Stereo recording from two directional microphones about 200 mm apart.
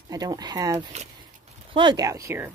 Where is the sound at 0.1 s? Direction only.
20° right (ahead or behind).